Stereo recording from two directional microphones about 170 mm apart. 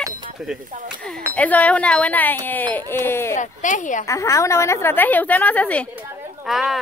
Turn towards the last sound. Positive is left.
turn(degrees=0)  # may be behind; listen again after turning